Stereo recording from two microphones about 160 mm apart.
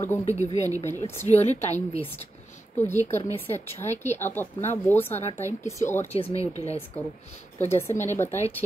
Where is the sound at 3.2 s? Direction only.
15° left (ahead or behind).